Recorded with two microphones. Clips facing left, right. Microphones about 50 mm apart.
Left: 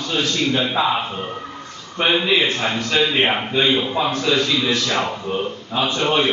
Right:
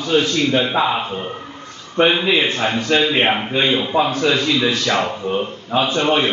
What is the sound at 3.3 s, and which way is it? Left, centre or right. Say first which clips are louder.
Speech: right 1 dB; centre.